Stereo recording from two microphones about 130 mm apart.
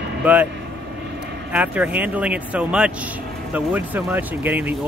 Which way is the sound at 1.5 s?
10° right (ahead or behind).